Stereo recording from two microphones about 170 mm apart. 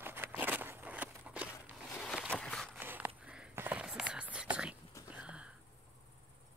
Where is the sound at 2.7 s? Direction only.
10° right (ahead or behind).